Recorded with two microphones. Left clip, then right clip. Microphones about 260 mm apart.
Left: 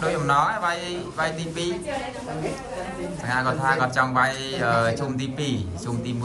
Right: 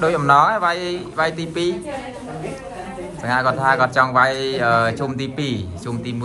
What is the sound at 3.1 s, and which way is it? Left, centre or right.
Speech, centre.